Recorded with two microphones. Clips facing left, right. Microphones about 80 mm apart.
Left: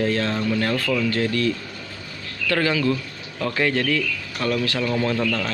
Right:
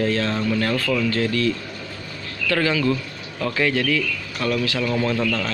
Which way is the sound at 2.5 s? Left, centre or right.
Left.